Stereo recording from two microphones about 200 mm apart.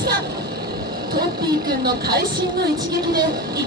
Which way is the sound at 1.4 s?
20° right (ahead or behind).